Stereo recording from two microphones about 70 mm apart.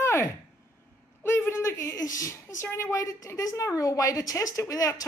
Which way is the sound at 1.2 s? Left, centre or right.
Left.